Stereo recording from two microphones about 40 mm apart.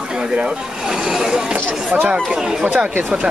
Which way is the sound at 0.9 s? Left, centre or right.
Centre.